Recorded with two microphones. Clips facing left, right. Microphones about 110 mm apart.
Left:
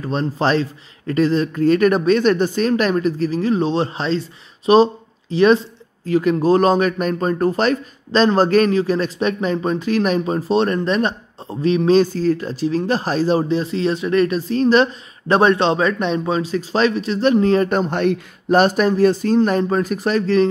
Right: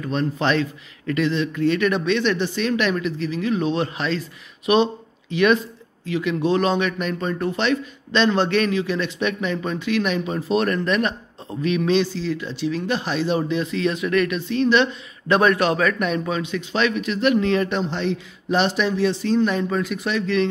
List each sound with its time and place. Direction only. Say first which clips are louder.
0.0 s speech: left 3 dB; 35° left (ahead or behind)